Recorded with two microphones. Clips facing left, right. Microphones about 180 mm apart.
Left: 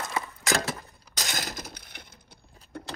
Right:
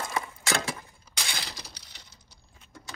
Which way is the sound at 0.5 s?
40° left (ahead or behind).